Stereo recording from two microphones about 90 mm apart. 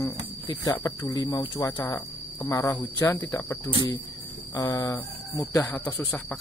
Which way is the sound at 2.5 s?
40° left (ahead or behind).